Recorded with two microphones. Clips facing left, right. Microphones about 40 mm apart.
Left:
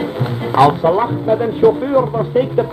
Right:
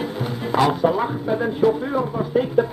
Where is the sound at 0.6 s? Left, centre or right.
Left.